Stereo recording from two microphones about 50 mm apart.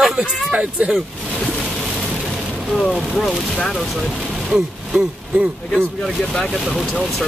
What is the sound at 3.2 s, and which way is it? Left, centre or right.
Speech, centre.